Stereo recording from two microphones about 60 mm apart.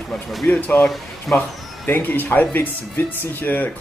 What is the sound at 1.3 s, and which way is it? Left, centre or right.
Speech, centre.